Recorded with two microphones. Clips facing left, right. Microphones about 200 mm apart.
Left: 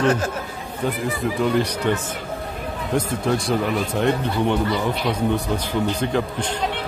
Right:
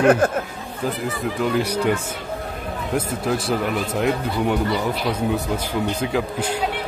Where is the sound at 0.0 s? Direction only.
55° right (ahead or behind).